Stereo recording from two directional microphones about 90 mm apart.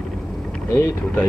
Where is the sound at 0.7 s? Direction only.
10° left (ahead or behind).